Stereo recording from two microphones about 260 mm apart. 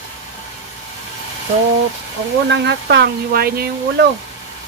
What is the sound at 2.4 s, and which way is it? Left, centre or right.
Speech, right.